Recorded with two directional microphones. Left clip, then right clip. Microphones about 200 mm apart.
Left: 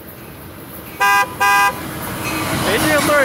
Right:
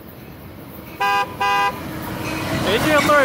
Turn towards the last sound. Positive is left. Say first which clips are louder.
# left 1 dB
turn(degrees=-20)  # may be behind; listen again after turning